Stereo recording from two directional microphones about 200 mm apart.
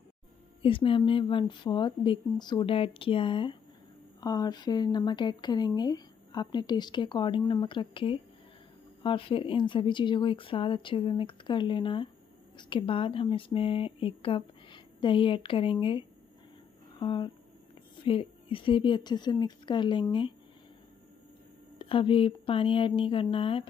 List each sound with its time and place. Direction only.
0.6 s speech: 25° left (ahead or behind)
17.0 s speech: 25° left (ahead or behind)
21.7 s speech: 25° left (ahead or behind)